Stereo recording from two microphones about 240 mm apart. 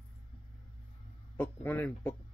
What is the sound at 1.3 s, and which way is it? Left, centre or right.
Speech, centre.